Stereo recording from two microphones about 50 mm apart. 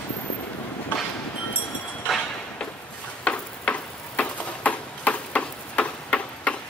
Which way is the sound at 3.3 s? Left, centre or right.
Left.